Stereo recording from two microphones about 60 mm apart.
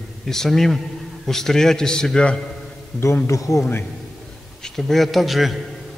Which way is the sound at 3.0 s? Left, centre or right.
Left.